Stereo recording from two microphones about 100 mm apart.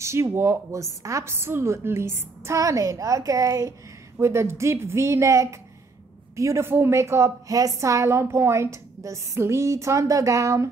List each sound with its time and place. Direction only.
0.0 s a woman's voice: 30° right (ahead or behind)